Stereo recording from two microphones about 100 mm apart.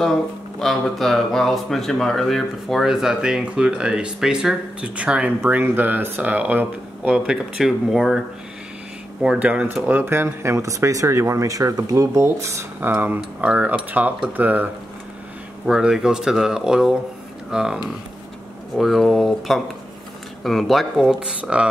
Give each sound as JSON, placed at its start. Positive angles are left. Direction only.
{"t": 0.0, "sound": "speech", "side_deg": 5}
{"t": 9.2, "sound": "speech", "side_deg": -10}
{"t": 15.6, "sound": "speech", "side_deg": -5}
{"t": 18.8, "sound": "speech", "side_deg": 0}